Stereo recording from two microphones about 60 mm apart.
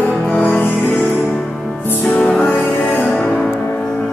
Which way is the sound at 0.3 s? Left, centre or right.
Left.